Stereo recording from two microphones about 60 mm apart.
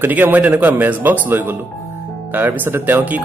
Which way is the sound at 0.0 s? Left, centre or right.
Right.